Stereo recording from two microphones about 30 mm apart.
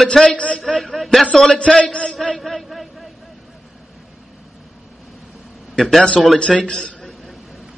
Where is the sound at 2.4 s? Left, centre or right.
Centre.